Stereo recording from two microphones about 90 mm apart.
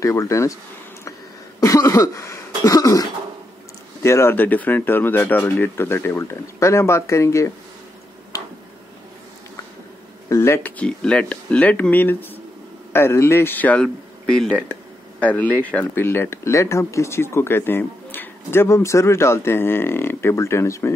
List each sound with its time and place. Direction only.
0.0 s speech: 35° left (ahead or behind)
1.6 s cough: 35° left (ahead or behind)
4.0 s speech: 30° left (ahead or behind)
10.3 s speech: 30° left (ahead or behind)
10.8 s speech: 10° left (ahead or behind)
13.8 s speech: 5° left (ahead or behind); by 20.9 s 30° left (ahead or behind)